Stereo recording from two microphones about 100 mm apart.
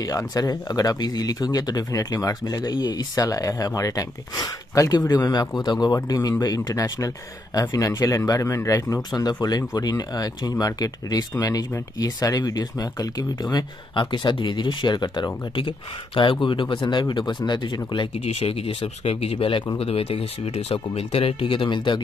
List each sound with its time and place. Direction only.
0.0 s speech: 35° left (ahead or behind); by 19.7 s 60° left (ahead or behind)
19.8 s speech: 75° left (ahead or behind); by 22.0 s 50° left (ahead or behind)